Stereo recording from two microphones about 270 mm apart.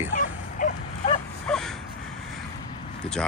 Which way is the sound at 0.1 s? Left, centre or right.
Left.